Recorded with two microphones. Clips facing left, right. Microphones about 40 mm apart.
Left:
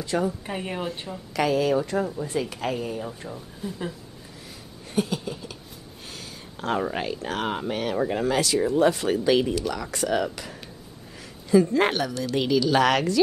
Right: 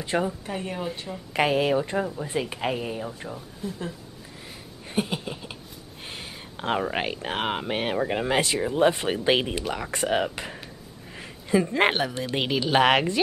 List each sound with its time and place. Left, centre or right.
0.0 s speech: right
0.5 s speech: centre
0.8 s a woman's voice: centre
1.3 s speech: right
1.8 s speech: centre
3.2 s speech: centre
4.9 s a sound: right
6.9 s speech: right